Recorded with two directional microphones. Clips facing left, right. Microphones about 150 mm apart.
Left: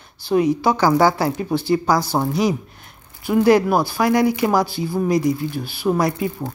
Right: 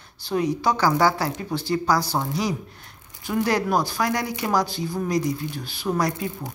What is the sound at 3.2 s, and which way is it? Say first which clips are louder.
A man's voice: left 8 dB; 10° left (ahead or behind).